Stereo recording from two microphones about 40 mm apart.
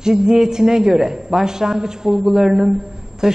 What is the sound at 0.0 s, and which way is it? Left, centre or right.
A man's voice, centre.